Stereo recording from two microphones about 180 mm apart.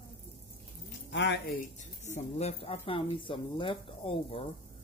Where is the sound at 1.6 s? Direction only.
40° left (ahead or behind).